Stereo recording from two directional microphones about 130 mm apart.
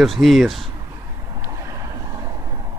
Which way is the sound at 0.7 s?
30° right (ahead or behind).